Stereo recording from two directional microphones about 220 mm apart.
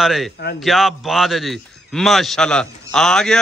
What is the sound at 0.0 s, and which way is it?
A man's voice, centre (ahead or behind).